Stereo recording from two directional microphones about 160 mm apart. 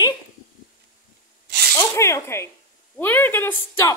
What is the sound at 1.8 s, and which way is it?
Zipper, 15° left (ahead or behind).